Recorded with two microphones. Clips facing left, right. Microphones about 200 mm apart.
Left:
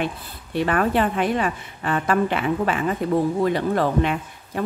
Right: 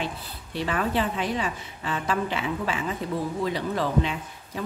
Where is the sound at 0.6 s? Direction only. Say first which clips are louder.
Left 6 dB; 55° left (ahead or behind).